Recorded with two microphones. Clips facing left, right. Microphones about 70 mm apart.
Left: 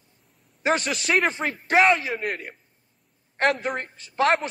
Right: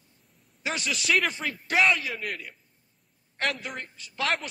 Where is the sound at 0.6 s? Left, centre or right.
Left.